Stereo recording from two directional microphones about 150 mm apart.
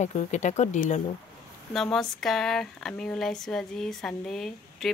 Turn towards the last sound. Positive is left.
turn(degrees=0)  # may be behind; listen again after turning